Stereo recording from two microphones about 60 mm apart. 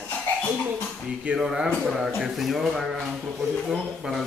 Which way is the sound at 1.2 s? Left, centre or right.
Centre.